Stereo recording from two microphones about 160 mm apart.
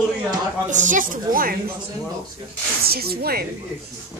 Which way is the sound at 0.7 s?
50° right (ahead or behind).